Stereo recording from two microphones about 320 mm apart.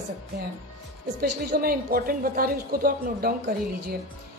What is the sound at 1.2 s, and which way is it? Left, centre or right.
A woman's voice, right.